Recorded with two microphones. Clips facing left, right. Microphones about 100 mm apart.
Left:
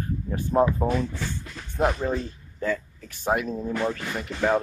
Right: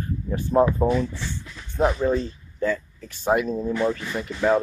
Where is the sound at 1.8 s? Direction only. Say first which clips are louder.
Right 3 dB; centre (ahead or behind).